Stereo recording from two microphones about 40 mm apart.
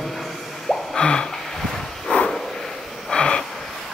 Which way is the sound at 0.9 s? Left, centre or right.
Left.